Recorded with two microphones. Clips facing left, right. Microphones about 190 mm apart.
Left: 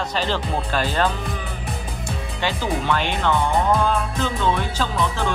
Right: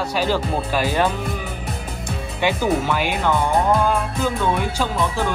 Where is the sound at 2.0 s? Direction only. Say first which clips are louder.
Right 4 dB; 15° right (ahead or behind).